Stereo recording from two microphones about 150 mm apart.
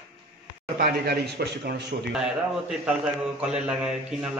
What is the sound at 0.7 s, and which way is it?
Speech, 80° right.